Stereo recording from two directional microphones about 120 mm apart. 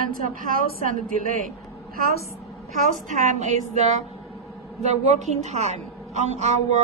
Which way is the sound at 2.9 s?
90° right.